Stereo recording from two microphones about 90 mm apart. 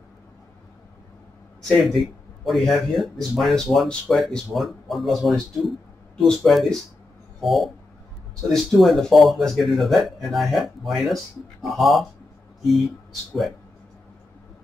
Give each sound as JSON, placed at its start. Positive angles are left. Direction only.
{"t": 1.6, "sound": "a man's voice", "side_deg": 0}
{"t": 7.3, "sound": "a sound", "side_deg": 0}
{"t": 8.5, "sound": "speech", "side_deg": 0}